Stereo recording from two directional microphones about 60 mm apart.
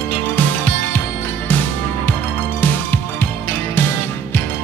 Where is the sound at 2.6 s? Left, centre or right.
Left.